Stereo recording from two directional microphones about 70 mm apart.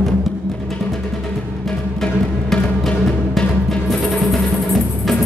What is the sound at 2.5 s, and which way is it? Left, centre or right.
Music, centre.